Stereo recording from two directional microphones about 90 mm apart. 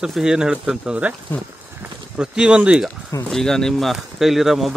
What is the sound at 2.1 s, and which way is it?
Speech, 10° right (ahead or behind).